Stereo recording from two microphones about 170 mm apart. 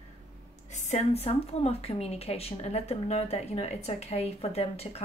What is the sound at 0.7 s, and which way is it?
Speech, 40° left (ahead or behind).